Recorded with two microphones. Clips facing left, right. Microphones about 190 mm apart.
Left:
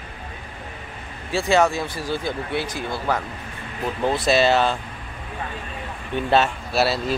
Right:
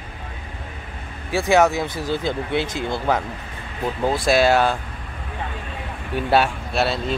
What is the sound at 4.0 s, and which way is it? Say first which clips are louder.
Speech: right 1 dB; 10° right (ahead or behind).